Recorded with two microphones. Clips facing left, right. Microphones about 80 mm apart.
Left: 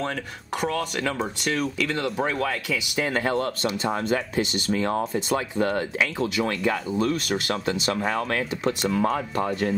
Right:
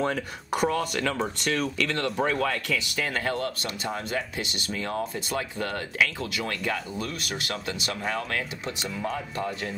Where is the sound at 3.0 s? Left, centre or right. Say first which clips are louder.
Left 6 dB; left.